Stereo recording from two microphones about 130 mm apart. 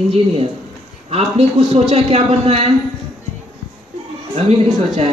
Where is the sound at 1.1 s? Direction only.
50° right (ahead or behind).